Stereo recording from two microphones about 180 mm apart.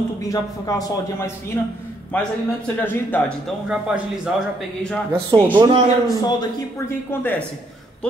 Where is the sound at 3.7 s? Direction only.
5° right (ahead or behind).